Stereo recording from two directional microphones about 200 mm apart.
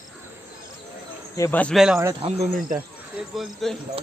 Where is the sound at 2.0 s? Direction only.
20° right (ahead or behind).